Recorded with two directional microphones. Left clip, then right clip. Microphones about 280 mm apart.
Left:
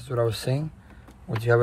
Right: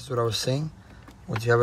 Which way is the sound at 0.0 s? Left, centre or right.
Centre.